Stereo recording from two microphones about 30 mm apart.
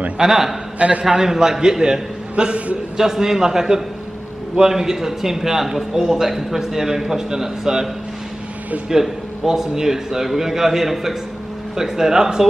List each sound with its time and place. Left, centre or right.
0.2 s a man's voice: centre
0.7 s a man's voice: right
1.2 s a man's voice: centre
3.0 s a man's voice: centre
9.0 s a man's voice: centre